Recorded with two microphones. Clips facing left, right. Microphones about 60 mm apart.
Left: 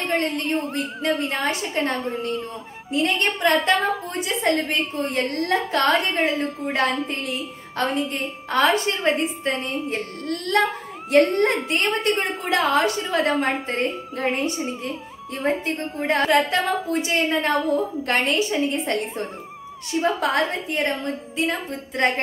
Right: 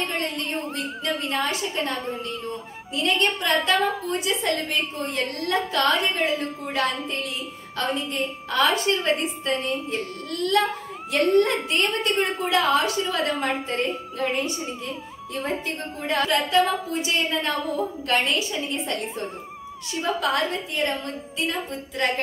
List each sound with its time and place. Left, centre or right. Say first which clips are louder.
1.0 s a woman's voice: left 3 dB; left
2.9 s a woman's voice: left 1 dB; left